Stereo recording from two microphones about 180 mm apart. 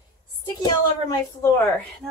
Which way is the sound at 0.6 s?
15° left (ahead or behind).